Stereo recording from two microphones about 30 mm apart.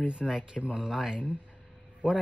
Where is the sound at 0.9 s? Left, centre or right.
Centre.